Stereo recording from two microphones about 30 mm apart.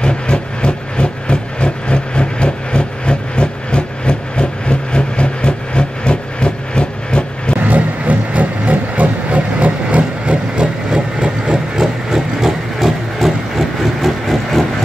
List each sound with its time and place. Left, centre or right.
0.0 s vehicle: left
7.6 s vehicle: right
9.3 s train: right
10.9 s hiss: right; by 14.7 s centre